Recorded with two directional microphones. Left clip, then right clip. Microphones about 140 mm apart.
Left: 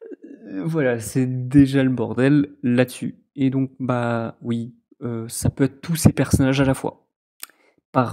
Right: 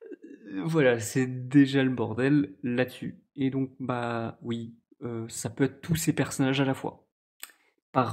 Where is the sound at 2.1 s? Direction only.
50° left (ahead or behind).